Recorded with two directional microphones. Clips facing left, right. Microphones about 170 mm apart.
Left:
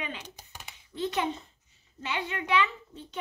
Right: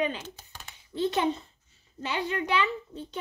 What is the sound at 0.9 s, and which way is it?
A child's voice, 30° right (ahead or behind).